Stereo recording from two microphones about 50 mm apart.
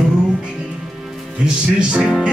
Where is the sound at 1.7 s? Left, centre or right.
Centre.